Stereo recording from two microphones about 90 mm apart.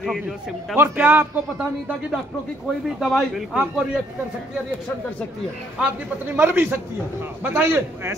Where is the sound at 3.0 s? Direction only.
Centre (ahead or behind).